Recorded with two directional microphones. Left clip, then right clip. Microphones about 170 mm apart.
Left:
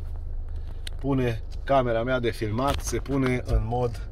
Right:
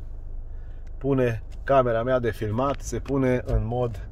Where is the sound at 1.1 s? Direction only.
40° right (ahead or behind); by 4.0 s 60° right (ahead or behind).